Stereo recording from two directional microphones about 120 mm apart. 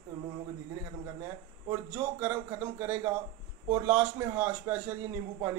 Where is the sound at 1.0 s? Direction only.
25° right (ahead or behind).